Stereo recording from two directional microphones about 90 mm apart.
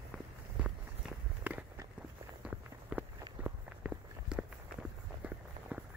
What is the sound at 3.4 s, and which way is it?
Walk, 10° right (ahead or behind).